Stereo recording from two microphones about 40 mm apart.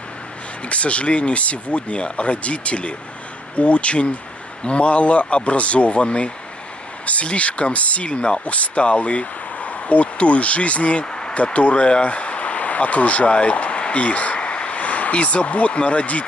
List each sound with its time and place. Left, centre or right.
0.7 s speech: left